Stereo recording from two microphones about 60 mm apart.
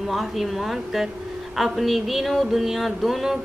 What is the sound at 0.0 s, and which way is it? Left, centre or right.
A woman's voice, centre.